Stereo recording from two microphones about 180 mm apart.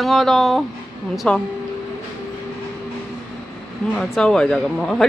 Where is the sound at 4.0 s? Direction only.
5° left (ahead or behind).